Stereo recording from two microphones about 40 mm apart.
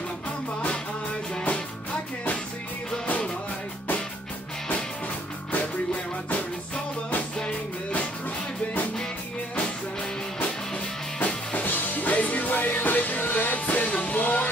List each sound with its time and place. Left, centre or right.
11.5 s music: left